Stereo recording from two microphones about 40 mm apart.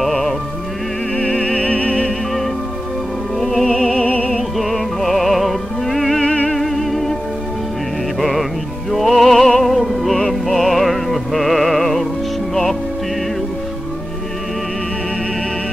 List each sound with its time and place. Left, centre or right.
1.1 s music: left
3.3 s music: centre
3.6 s music: centre
4.0 s music: left
4.4 s music: centre
8.2 s music: centre